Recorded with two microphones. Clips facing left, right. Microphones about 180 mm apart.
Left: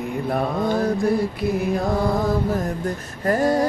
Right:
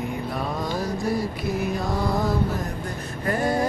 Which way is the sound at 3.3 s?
40° left (ahead or behind).